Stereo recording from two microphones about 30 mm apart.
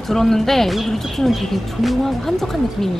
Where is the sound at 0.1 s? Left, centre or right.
Centre.